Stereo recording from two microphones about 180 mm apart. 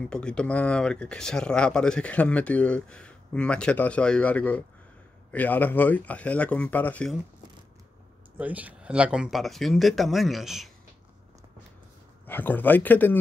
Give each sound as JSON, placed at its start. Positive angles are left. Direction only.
{"t": 0.0, "sound": "speech", "side_deg": 5}
{"t": 8.4, "sound": "speech", "side_deg": -10}
{"t": 12.3, "sound": "speech", "side_deg": 10}